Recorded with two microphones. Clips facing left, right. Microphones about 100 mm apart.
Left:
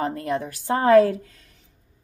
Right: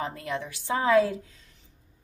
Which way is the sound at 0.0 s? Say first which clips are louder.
Left 7 dB; 45° left (ahead or behind).